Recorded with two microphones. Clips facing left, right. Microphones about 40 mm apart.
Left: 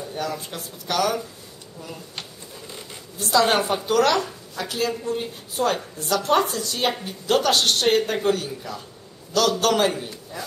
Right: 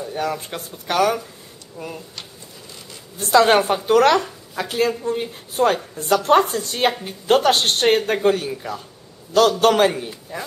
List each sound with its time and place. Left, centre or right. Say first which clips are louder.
0.2 s speech: right 4 dB; right
3.2 s speech: right 5 dB; right